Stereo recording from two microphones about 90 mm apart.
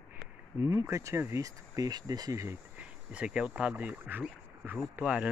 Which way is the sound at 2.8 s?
15° right (ahead or behind).